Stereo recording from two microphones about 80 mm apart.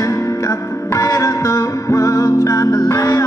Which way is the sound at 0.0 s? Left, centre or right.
Left.